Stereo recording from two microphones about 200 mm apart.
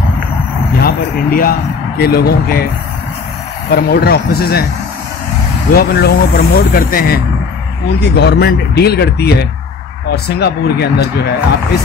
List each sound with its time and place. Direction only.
0.8 s speech: 45° left (ahead or behind)
3.7 s speech: 50° left (ahead or behind)
5.7 s speech: 50° left (ahead or behind)